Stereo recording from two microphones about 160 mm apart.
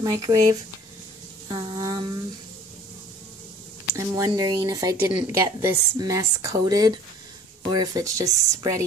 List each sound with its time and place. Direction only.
0.0 s speech: 20° right (ahead or behind)
3.9 s speech: 20° right (ahead or behind)